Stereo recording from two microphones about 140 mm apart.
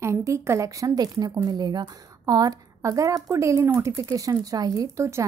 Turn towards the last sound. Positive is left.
turn(degrees=-20)  # may be behind; listen again after turning